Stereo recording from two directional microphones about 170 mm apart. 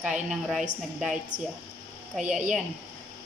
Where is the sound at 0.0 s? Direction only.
5° right (ahead or behind).